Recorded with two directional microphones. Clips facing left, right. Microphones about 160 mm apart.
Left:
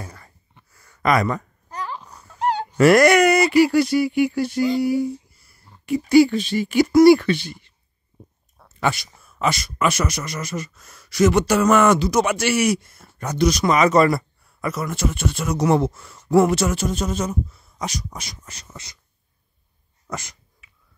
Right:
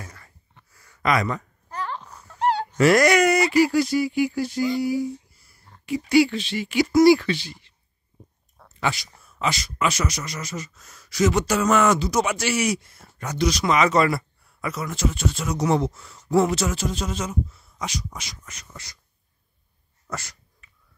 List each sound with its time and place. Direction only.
0.0 s a sound: 30° left (ahead or behind)
0.8 s speech: 45° left (ahead or behind)
1.7 s a sound: 10° left (ahead or behind)
2.8 s speech: 55° left (ahead or behind)
5.9 s speech: 45° left (ahead or behind)
8.6 s a sound: 5° left (ahead or behind)
9.4 s speech: 50° left (ahead or behind)
13.2 s speech: 45° left (ahead or behind)
18.7 s speech: 20° left (ahead or behind)
20.1 s sneeze: 20° left (ahead or behind)